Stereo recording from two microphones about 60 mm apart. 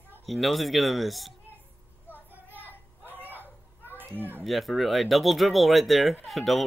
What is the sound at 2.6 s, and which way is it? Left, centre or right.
Child singing, left.